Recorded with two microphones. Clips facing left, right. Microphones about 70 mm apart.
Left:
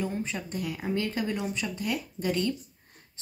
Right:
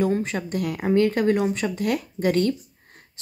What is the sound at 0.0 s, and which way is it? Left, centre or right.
Speech, right.